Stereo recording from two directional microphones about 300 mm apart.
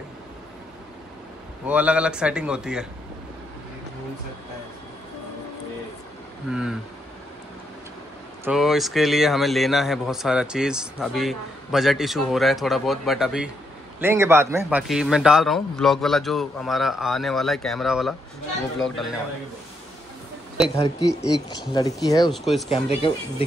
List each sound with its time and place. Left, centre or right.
1.7 s a man's voice: centre
6.5 s a man's voice: centre
8.5 s a man's voice: centre
20.8 s speech: centre
22.3 s a man's voice: centre
23.0 s speech: centre